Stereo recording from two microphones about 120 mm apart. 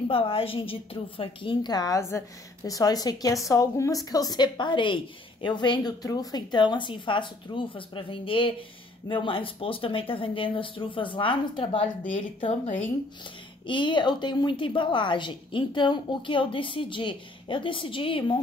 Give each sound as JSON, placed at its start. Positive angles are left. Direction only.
{"t": 0.1, "sound": "a woman's voice", "side_deg": 50}
{"t": 13.7, "sound": "a woman's voice", "side_deg": 40}